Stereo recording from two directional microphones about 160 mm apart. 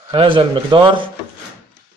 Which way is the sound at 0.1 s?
30° right (ahead or behind).